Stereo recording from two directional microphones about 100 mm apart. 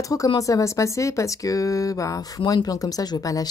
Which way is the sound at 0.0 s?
35° left (ahead or behind).